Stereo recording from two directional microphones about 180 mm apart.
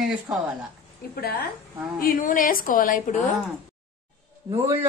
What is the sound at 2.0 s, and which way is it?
A woman's voice, 50° left (ahead or behind).